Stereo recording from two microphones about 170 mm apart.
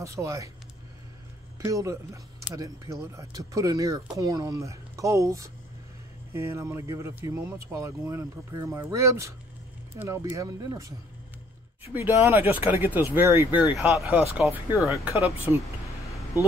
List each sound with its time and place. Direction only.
0.0 s speech: 15° right (ahead or behind)
1.6 s speech: 20° right (ahead or behind)